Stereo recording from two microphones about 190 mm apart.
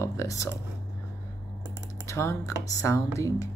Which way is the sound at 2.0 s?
15° left (ahead or behind).